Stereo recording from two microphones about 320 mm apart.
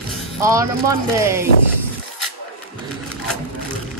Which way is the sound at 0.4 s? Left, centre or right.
Centre.